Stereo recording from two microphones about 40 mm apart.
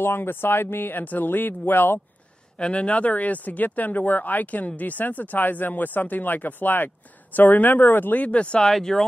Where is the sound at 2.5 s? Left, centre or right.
Left.